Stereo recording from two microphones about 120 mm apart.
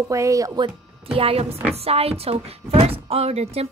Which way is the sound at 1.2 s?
55° right (ahead or behind).